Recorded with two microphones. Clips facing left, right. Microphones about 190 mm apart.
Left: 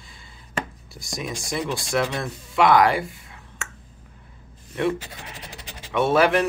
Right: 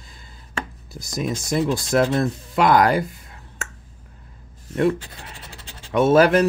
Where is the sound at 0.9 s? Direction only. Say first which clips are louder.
Right 7 dB; 40° right (ahead or behind).